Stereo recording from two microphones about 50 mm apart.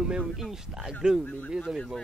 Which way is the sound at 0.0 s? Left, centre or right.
Centre.